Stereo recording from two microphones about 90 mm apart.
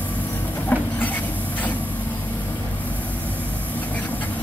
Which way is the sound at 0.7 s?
20° left (ahead or behind).